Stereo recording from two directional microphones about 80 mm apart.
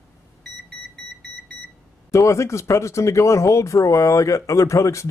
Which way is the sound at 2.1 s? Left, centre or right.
Left.